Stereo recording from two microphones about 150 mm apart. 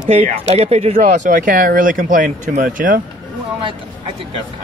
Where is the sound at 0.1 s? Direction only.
45° right (ahead or behind); by 3.0 s 65° right (ahead or behind).